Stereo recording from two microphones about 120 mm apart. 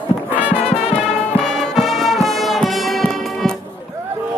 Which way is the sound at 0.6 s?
60° left (ahead or behind).